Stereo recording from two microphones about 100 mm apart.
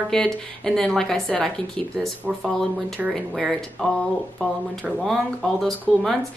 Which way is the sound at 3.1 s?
Centre (ahead or behind).